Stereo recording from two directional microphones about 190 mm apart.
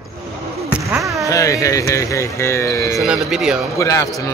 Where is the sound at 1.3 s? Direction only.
15° left (ahead or behind).